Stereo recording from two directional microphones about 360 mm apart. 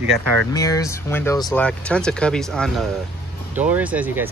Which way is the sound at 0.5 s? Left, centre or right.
Centre.